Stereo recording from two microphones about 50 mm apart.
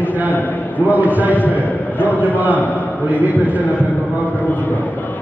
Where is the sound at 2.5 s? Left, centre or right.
Left.